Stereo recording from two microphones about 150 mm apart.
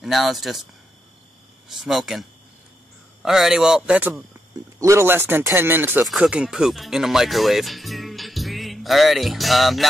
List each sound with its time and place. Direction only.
0.0 s a man's voice: centre (ahead or behind)
1.7 s a man's voice: 5° right (ahead or behind)
4.7 s speech: 20° right (ahead or behind)
6.0 s speech: 5° right (ahead or behind)